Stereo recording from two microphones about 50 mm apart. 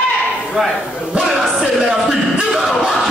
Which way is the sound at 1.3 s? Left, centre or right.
Centre.